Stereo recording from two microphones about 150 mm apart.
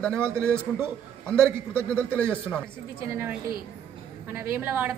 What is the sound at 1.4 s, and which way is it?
Speech, 15° right (ahead or behind).